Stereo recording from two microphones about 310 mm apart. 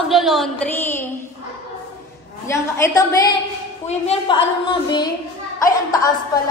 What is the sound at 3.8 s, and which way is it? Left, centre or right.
A woman's voice, centre.